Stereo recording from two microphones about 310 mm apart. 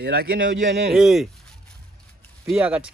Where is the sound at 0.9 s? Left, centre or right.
Centre.